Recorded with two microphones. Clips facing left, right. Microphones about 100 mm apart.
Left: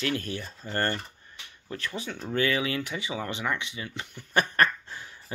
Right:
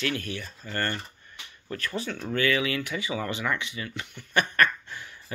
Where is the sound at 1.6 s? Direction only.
20° left (ahead or behind).